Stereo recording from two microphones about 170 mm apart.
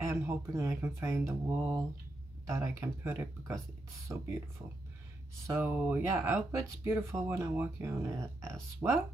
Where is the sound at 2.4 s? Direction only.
15° right (ahead or behind).